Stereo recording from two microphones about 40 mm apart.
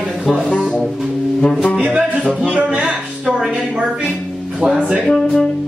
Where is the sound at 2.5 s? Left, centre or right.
Centre.